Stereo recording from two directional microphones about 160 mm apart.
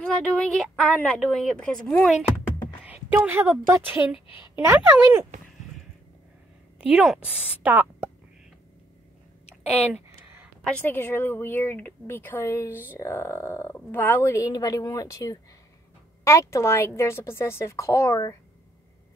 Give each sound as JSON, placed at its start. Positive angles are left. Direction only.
{"t": 0.0, "sound": "a woman's voice", "side_deg": 5}
{"t": 2.8, "sound": "a woman's voice", "side_deg": -10}
{"t": 6.9, "sound": "a woman's voice", "side_deg": -5}
{"t": 9.6, "sound": "speech", "side_deg": 40}
{"t": 10.6, "sound": "a woman's voice", "side_deg": 10}